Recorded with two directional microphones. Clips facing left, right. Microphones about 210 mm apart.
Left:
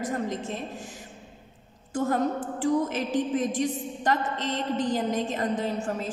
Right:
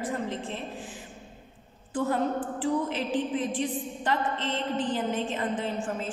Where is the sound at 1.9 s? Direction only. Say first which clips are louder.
Left 1 dB; 45° left (ahead or behind).